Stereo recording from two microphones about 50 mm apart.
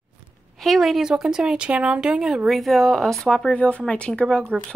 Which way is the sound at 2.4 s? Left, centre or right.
Centre.